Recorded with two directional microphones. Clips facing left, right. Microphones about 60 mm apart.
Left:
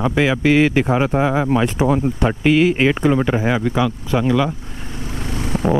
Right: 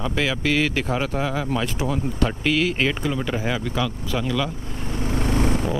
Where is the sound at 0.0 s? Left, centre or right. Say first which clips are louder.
Left 7 dB; left.